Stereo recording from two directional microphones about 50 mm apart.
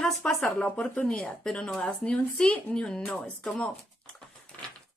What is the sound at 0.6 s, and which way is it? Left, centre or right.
Speech, left.